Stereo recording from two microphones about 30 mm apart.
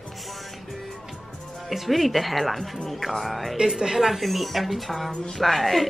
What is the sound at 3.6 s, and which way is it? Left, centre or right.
Speech, right.